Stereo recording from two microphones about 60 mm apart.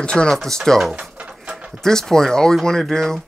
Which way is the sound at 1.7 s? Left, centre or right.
Centre.